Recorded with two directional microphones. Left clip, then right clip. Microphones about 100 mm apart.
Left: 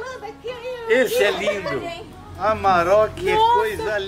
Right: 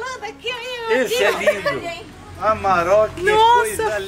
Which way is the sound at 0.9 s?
15° left (ahead or behind).